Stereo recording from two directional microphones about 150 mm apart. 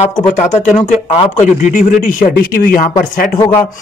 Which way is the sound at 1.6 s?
60° left (ahead or behind).